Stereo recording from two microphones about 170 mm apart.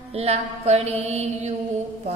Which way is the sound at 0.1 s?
40° right (ahead or behind).